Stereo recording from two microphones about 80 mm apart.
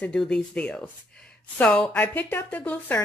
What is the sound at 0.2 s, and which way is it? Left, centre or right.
Speech, centre.